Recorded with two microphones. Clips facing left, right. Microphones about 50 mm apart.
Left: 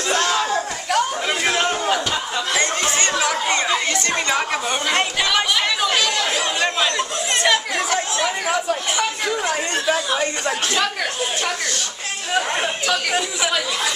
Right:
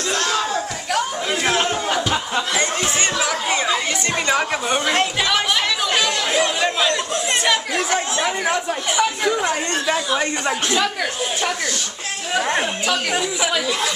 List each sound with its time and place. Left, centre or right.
0.3 s chatter: centre
2.0 s a sound: centre
3.3 s chatter: centre
4.8 s chatter: centre
12.4 s a sound: centre
13.1 s speech: centre